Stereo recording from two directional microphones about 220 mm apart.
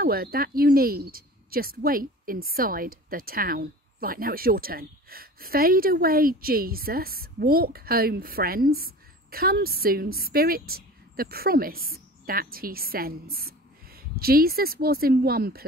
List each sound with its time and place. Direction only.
0.0 s speech: 45° right (ahead or behind)